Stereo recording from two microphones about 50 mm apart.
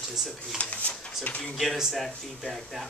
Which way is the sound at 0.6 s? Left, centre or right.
Left.